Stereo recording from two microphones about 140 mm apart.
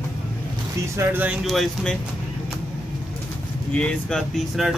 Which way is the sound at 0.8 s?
20° right (ahead or behind).